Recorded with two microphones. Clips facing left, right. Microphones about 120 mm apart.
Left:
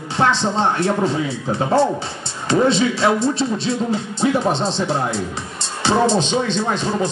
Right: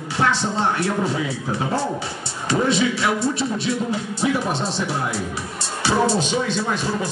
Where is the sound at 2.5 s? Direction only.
25° left (ahead or behind).